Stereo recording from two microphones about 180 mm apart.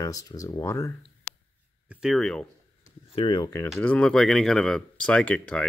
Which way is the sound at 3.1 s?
30° left (ahead or behind).